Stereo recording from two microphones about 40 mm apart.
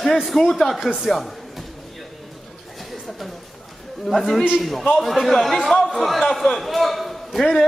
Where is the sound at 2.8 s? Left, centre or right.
Centre.